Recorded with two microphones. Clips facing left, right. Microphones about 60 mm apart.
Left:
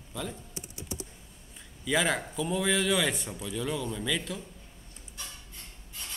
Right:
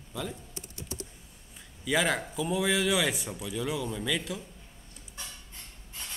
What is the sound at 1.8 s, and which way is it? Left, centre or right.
Speech, centre.